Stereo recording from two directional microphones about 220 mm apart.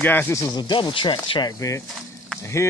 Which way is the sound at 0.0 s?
10° left (ahead or behind).